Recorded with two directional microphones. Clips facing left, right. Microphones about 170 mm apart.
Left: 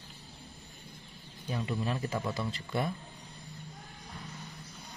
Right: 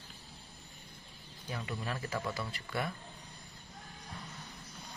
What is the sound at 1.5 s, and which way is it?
Speech, 25° left (ahead or behind).